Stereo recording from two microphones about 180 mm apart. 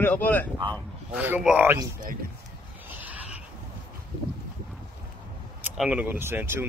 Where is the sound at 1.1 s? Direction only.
10° right (ahead or behind).